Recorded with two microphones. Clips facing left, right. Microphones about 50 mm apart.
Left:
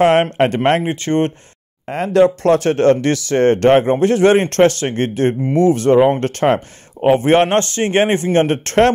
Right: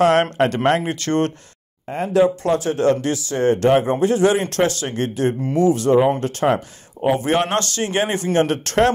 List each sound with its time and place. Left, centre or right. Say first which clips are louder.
0.0 s a man's voice: left 3 dB; left
1.9 s speech: left 4 dB; left